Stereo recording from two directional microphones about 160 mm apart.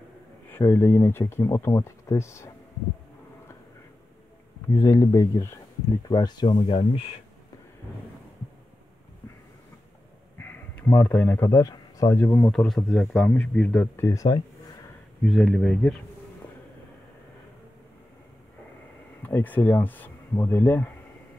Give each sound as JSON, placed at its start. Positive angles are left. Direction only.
{"t": 0.5, "sound": "speech", "side_deg": 15}
{"t": 4.7, "sound": "speech", "side_deg": 20}
{"t": 10.4, "sound": "speech", "side_deg": 10}
{"t": 15.2, "sound": "speech", "side_deg": 0}
{"t": 19.2, "sound": "speech", "side_deg": 10}